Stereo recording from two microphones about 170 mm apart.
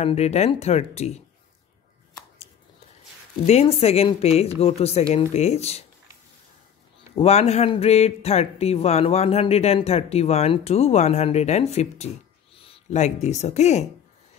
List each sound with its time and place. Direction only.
0.0 s speech: 40° left (ahead or behind)
3.4 s speech: 35° left (ahead or behind)
7.2 s speech: 40° left (ahead or behind)